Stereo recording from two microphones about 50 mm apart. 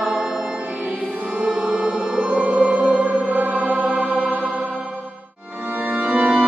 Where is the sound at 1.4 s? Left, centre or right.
Right.